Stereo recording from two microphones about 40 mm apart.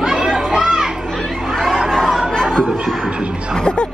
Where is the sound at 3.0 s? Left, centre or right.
Right.